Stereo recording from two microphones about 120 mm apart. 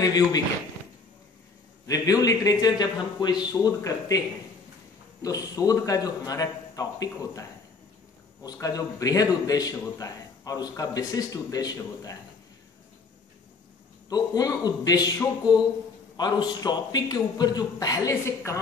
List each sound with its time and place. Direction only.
0.0 s a man's voice: 30° left (ahead or behind)
1.9 s a man's voice: 30° left (ahead or behind)
5.2 s a man's voice: 30° left (ahead or behind)
14.0 s a man's voice: 35° left (ahead or behind)
16.2 s a man's voice: 35° left (ahead or behind)